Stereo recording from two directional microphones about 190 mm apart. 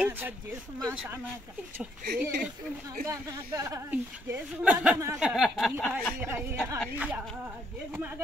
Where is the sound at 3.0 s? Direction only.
15° right (ahead or behind); by 6.1 s 5° left (ahead or behind).